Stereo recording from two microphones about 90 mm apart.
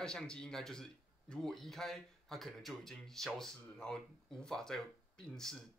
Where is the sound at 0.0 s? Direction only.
10° left (ahead or behind).